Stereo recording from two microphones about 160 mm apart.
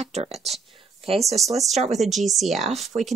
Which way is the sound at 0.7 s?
35° right (ahead or behind).